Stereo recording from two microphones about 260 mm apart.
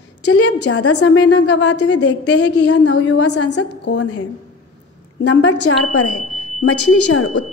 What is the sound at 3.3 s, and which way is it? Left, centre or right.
Speech, left.